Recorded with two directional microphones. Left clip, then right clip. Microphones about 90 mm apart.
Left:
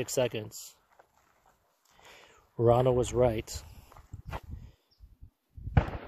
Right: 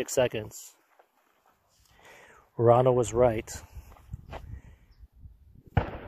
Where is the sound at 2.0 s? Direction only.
35° left (ahead or behind).